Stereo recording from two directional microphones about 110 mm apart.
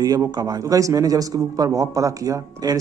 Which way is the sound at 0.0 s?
35° right (ahead or behind).